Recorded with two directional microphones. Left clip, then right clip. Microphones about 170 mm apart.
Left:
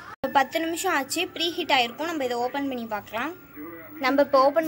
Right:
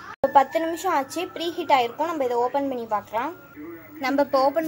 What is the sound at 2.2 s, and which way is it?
Speech, 15° left (ahead or behind).